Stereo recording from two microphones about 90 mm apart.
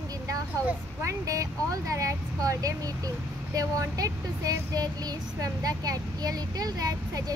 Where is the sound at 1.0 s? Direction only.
40° right (ahead or behind).